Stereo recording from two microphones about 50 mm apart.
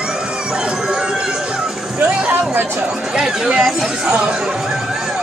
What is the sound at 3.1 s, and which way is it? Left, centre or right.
Speech, centre.